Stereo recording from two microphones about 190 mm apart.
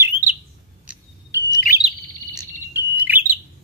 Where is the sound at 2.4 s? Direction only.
10° right (ahead or behind).